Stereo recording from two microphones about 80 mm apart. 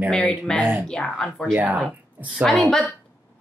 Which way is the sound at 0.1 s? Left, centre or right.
Centre.